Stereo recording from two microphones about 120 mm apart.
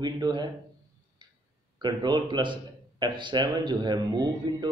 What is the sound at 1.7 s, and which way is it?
A man's voice, 35° right (ahead or behind).